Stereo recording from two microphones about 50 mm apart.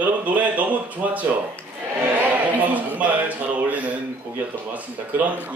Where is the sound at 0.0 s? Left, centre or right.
Right.